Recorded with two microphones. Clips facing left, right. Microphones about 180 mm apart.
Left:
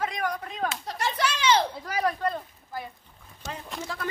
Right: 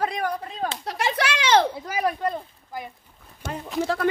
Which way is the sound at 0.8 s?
75° right (ahead or behind).